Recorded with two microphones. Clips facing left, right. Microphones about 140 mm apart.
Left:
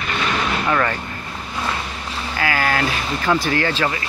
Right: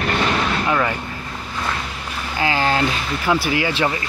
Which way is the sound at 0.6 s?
10° right (ahead or behind).